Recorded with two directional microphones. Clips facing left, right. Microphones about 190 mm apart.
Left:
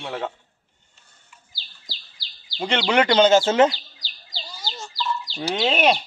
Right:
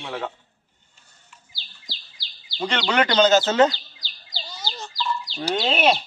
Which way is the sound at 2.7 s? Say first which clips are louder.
Left 3 dB; 25° left (ahead or behind).